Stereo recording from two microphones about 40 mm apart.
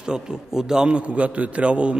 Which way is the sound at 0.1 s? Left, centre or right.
Centre.